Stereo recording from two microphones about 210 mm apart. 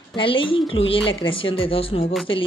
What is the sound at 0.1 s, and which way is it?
Speech, 25° left (ahead or behind).